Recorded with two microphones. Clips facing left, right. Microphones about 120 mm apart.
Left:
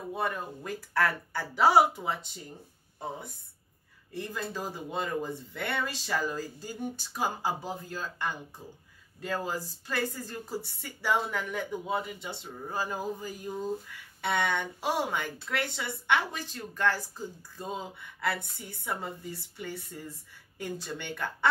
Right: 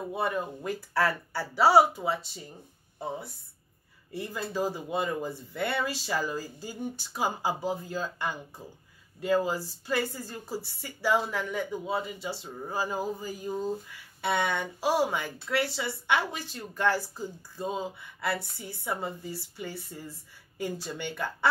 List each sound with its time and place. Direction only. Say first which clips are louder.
0.1 s speech: right 2 dB; 10° right (ahead or behind)
4.1 s speech: right 2 dB; 10° right (ahead or behind)